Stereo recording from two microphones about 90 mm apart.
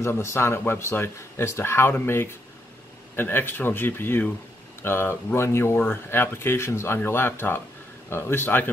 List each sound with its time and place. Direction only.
0.0 s speech: 30° left (ahead or behind)